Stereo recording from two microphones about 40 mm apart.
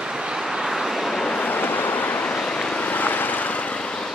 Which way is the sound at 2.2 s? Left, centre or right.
Left.